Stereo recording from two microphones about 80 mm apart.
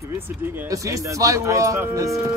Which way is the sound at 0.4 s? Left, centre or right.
Right.